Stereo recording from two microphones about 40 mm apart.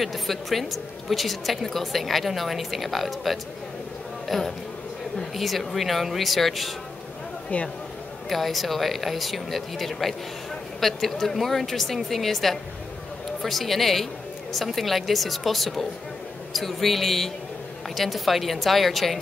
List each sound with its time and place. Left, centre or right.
0.0 s a woman's voice: centre
7.5 s speech: left
8.3 s a woman's voice: centre